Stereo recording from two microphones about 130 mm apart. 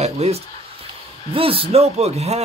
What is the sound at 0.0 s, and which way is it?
Speech, 55° right (ahead or behind).